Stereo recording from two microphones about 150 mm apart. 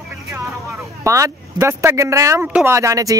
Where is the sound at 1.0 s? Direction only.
20° right (ahead or behind).